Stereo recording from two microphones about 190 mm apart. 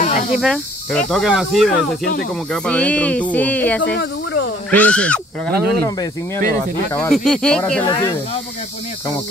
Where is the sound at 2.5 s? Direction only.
5° left (ahead or behind).